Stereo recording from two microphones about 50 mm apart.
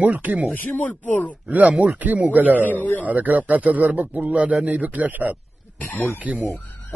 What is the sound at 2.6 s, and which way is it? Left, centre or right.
Speech, left.